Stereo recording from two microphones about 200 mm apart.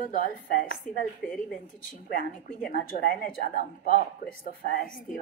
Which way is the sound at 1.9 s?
45° left (ahead or behind).